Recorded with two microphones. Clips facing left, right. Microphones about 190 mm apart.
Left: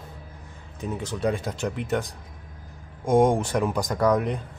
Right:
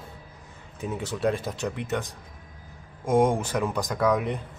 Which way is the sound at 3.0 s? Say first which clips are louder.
Left 2 dB; centre (ahead or behind).